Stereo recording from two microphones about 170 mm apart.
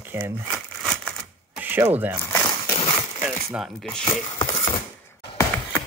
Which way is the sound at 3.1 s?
5° right (ahead or behind).